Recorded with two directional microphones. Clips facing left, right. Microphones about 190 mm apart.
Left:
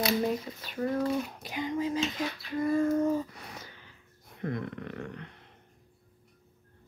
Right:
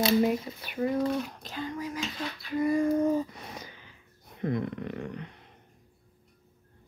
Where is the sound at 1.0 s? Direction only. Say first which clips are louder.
Right 1 dB; 5° left (ahead or behind); by 2.2 s 25° left (ahead or behind).